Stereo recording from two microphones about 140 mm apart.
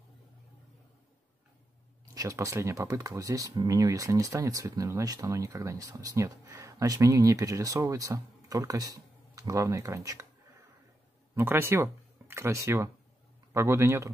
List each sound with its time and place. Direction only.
2.1 s speech: 25° right (ahead or behind)
11.3 s speech: 15° right (ahead or behind)